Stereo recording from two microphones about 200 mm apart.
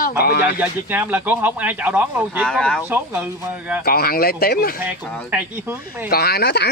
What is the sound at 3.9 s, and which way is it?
Speech, 50° left (ahead or behind).